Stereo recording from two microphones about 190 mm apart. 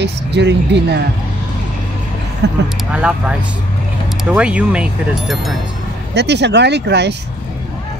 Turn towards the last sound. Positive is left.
turn(degrees=-65)  # may be behind; listen again after turning